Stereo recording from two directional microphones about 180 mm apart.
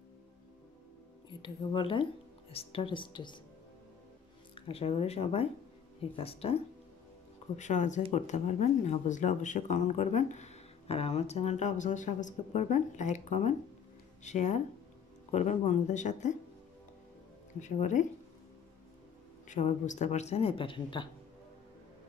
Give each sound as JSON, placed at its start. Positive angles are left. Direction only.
{"t": 1.4, "sound": "speech", "side_deg": 30}
{"t": 4.6, "sound": "speech", "side_deg": 30}
{"t": 17.6, "sound": "speech", "side_deg": 40}
{"t": 19.4, "sound": "speech", "side_deg": 40}